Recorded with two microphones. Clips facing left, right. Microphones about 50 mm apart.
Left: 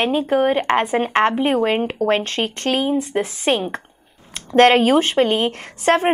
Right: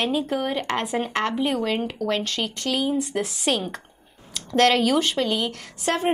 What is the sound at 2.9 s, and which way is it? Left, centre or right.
Speech, left.